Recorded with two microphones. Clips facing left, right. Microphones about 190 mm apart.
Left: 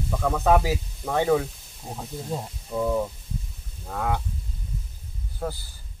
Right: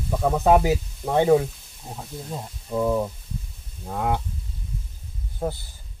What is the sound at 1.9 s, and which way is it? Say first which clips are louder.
Speech: left 1 dB; 15° left (ahead or behind).